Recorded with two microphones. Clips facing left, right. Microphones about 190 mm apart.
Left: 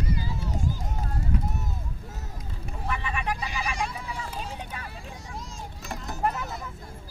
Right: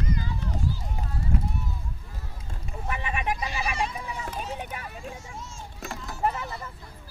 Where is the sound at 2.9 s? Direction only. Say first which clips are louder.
Right 1 dB; 15° right (ahead or behind).